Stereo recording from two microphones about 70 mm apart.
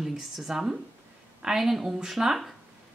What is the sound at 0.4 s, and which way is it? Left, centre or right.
A woman's voice, centre.